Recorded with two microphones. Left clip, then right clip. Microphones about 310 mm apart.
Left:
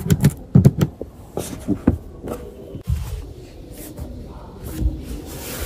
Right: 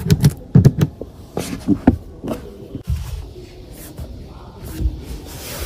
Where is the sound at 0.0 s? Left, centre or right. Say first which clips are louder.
Right 2 dB; centre.